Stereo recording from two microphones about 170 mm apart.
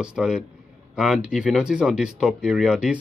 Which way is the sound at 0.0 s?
5° right (ahead or behind).